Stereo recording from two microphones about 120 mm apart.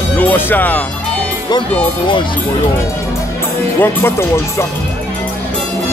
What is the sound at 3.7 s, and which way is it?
Speech, 20° left (ahead or behind).